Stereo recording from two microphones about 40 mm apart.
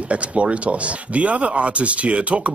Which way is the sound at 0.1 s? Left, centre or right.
Right.